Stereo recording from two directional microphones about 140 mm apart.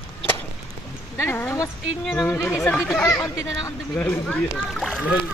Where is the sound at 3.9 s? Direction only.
15° left (ahead or behind).